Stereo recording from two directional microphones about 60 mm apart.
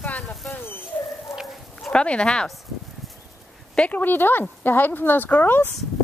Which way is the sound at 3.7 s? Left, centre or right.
Centre.